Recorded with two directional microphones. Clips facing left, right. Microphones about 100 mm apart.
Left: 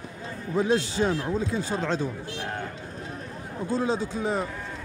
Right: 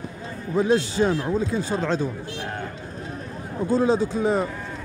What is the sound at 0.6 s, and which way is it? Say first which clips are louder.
Speech: right 4 dB; 40° right (ahead or behind).